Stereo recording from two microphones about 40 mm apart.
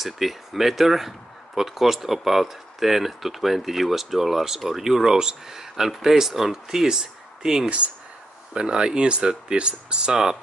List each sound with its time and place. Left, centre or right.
0.0 s speech: centre